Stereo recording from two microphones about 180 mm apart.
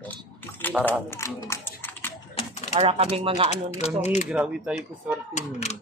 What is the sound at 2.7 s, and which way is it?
Speech, 35° right (ahead or behind).